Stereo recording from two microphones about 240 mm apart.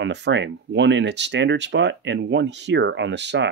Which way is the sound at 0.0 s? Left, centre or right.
Right.